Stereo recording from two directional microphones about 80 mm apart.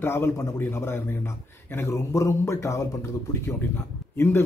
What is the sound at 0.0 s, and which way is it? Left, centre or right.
Speech, left.